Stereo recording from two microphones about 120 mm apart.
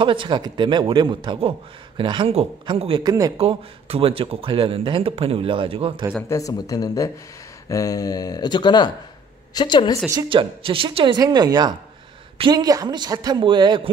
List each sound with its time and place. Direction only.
0.0 s speech: 45° right (ahead or behind)
3.0 s speech: 30° right (ahead or behind)
3.3 s speech: 55° right (ahead or behind)
6.2 s speech: 25° left (ahead or behind)
10.3 s speech: 45° right (ahead or behind)